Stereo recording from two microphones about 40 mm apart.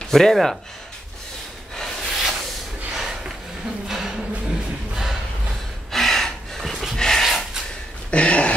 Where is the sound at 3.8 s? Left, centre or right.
Centre.